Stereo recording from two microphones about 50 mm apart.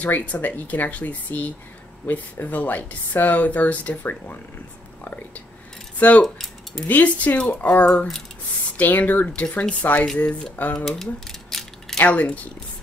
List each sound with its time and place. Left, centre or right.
0.0 s speech: left
5.9 s speech: left
6.2 s speech: centre
6.9 s speech: left
11.5 s mechanisms: centre
12.0 s speech: left